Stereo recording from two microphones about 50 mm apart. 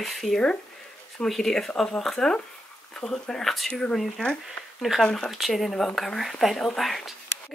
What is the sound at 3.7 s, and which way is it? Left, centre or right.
Speech, centre.